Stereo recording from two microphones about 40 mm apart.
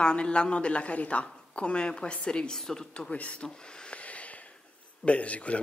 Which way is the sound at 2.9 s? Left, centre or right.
Left.